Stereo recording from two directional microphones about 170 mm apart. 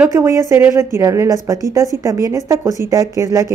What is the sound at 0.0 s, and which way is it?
Speech, 15° right (ahead or behind).